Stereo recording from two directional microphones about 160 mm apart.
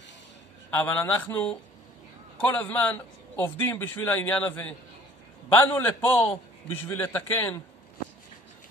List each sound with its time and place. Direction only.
0.7 s a man's voice: 10° left (ahead or behind)